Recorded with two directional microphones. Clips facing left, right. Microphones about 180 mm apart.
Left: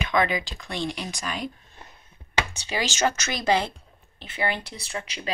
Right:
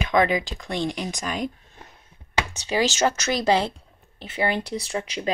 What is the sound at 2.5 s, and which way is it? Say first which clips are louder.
Speech: right 6 dB; 40° right (ahead or behind).